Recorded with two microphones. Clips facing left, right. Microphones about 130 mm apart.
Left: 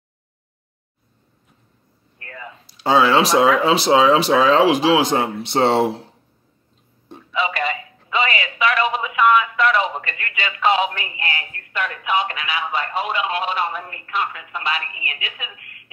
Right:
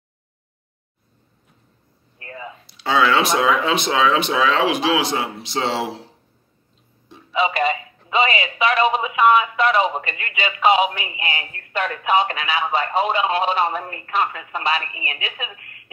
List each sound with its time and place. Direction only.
2.1 s a sound: 25° right (ahead or behind)
2.6 s speech: 40° left (ahead or behind); by 5.9 s 55° left (ahead or behind)
7.3 s a man's voice: 20° right (ahead or behind)